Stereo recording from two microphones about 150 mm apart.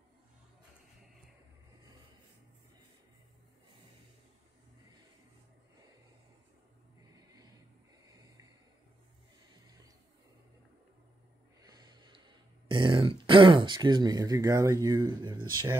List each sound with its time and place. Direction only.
11.6 s speech: 25° right (ahead or behind)